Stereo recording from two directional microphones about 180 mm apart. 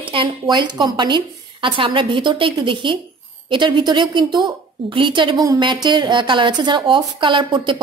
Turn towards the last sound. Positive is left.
turn(degrees=-25)  # may be behind; listen again after turning